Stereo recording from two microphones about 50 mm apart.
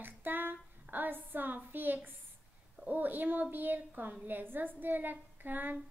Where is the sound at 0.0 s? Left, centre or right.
Right.